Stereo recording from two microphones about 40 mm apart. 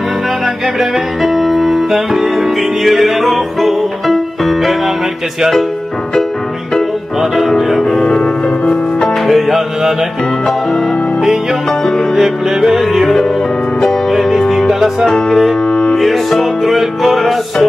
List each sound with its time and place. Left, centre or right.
0.7 s music: centre
7.2 s music: centre
9.3 s music: centre
12.2 s music: centre
14.7 s music: centre
15.0 s music: centre
16.0 s music: centre